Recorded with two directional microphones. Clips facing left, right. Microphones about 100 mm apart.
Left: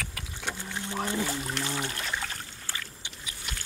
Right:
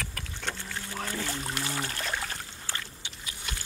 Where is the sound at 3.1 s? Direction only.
Centre (ahead or behind).